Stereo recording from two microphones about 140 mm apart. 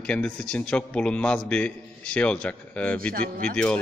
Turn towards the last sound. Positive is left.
turn(degrees=10)  # may be behind; listen again after turning